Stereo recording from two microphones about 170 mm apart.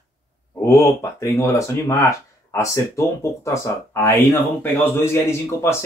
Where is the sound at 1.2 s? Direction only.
20° left (ahead or behind).